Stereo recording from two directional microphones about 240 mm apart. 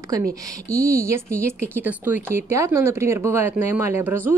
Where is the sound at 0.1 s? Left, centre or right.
Centre.